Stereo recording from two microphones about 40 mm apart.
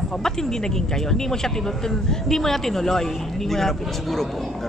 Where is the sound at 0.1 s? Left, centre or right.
Centre.